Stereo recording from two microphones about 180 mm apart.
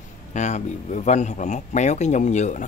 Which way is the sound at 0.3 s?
40° left (ahead or behind).